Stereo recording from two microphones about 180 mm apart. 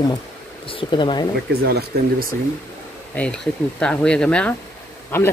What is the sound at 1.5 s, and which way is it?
Speech, 60° right (ahead or behind).